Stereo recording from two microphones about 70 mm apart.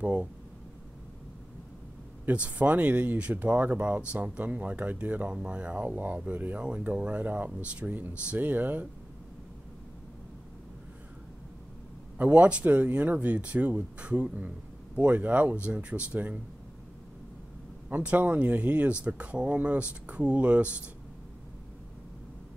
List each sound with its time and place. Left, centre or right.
0.0 s speech: centre
2.2 s speech: right
12.2 s speech: centre
17.8 s speech: right